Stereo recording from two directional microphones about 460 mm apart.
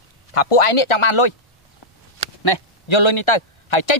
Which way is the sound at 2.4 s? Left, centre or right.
Left.